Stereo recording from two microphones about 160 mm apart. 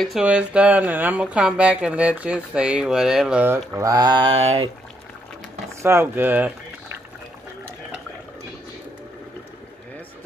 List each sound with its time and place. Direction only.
0.0 s speech: 5° right (ahead or behind); by 4.6 s 35° right (ahead or behind)
5.8 s speech: 15° right (ahead or behind)